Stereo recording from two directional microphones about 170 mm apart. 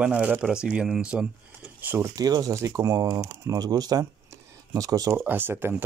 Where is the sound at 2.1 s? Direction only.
20° right (ahead or behind).